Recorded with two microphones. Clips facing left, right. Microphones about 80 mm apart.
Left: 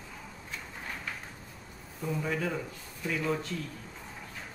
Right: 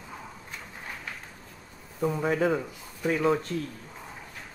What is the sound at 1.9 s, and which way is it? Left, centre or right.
Speech, right.